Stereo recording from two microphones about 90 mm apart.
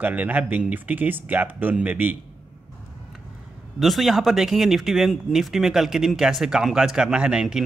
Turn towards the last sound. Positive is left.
turn(degrees=-10)  # may be behind; listen again after turning